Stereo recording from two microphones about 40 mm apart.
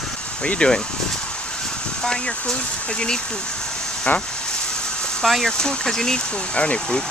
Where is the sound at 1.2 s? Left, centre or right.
Left.